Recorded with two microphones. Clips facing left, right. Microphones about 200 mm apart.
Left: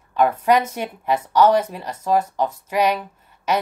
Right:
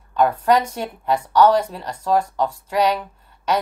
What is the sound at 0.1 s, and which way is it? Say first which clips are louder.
A woman's voice: even; 10° left (ahead or behind).